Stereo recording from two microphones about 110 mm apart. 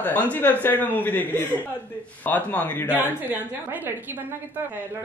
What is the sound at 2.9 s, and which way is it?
A woman's voice, 20° right (ahead or behind).